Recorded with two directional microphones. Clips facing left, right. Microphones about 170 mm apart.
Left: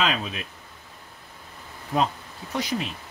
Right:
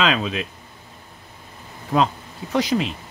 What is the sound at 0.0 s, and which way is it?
Speech, 90° right.